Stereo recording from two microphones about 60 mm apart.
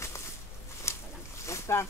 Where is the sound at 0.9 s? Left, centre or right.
Left.